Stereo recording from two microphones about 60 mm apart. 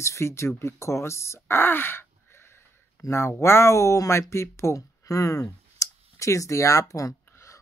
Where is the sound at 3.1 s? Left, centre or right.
Left.